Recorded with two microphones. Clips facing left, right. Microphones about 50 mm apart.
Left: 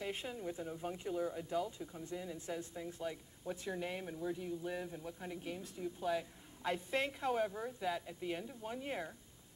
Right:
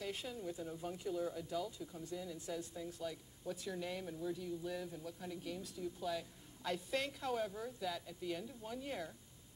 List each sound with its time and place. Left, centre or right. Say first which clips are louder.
0.0 s speech: left 2 dB; left